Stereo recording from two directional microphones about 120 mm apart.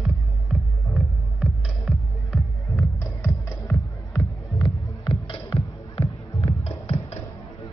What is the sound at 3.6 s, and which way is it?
Music, 25° left (ahead or behind).